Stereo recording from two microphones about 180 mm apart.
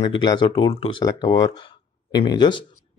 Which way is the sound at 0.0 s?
25° left (ahead or behind).